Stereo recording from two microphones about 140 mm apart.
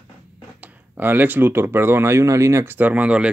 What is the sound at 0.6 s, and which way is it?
Speech, 15° right (ahead or behind).